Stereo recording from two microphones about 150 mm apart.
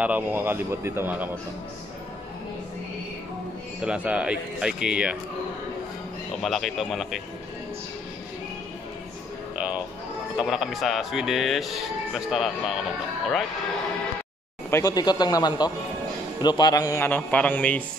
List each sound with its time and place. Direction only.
0.0 s speech: 10° right (ahead or behind)
3.8 s speech: 10° right (ahead or behind)
6.4 s speech: centre (ahead or behind)
10.3 s speech: 5° right (ahead or behind)
14.7 s speech: 25° left (ahead or behind)
17.1 s a man's voice: 10° left (ahead or behind)